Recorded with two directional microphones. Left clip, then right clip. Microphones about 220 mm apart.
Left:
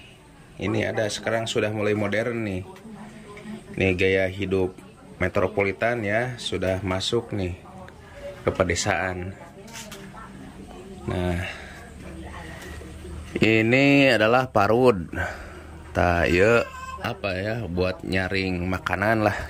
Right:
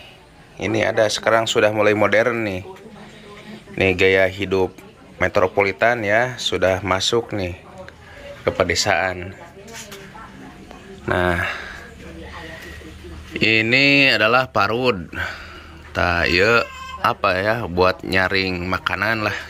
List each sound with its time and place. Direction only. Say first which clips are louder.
0.6 s speech: right 7 dB; 10° left (ahead or behind)
3.7 s speech: right 6 dB; 10° left (ahead or behind)
11.1 s speech: right 10 dB; 5° left (ahead or behind)
13.3 s speech: right 4 dB; 15° left (ahead or behind)